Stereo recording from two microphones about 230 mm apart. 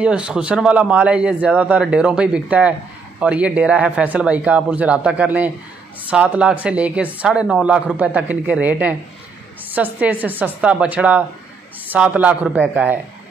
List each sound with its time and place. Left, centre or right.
0.0 s speech: centre